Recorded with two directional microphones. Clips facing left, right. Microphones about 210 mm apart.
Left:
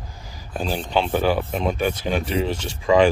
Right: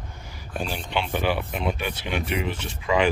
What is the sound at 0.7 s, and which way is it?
Speech, 35° left (ahead or behind).